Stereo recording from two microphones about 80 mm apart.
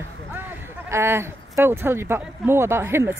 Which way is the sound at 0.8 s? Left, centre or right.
Right.